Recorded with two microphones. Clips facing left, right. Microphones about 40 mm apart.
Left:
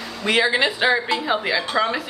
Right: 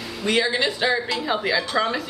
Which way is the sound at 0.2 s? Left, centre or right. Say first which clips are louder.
Left 3 dB; centre.